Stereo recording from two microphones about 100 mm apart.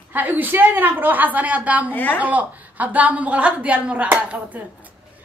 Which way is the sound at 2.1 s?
15° right (ahead or behind).